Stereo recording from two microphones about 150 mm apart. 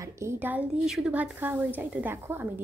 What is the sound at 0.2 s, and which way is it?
A woman's voice, 15° right (ahead or behind).